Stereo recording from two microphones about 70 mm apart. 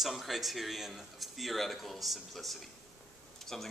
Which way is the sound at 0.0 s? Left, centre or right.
Centre.